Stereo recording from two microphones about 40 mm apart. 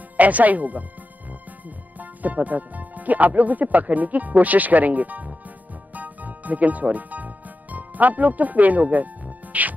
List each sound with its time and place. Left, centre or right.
0.2 s speech: right
2.0 s speech: right
5.9 s music: right